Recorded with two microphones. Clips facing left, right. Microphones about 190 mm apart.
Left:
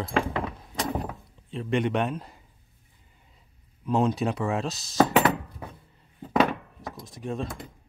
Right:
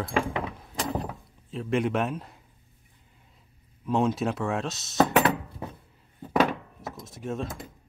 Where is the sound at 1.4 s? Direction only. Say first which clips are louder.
Even; centre (ahead or behind).